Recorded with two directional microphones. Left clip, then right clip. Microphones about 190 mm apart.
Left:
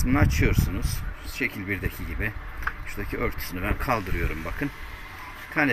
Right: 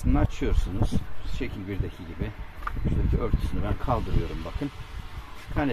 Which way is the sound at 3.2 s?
10° right (ahead or behind).